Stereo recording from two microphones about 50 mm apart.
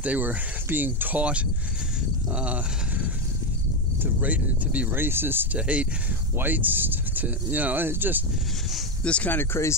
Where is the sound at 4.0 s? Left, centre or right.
Right.